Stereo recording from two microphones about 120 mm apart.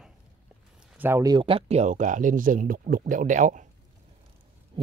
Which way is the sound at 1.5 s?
55° right (ahead or behind).